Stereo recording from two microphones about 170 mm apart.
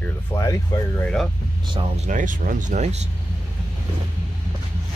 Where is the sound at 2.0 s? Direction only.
50° right (ahead or behind).